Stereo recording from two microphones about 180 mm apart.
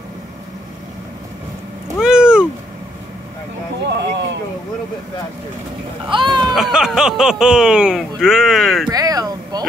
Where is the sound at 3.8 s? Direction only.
70° right (ahead or behind).